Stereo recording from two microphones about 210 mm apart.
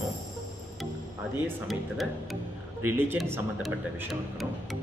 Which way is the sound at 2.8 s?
10° right (ahead or behind).